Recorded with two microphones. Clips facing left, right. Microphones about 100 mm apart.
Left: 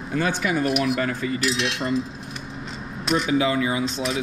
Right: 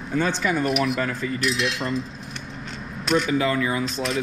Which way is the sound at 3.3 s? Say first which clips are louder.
Left 1 dB; 55° right (ahead or behind).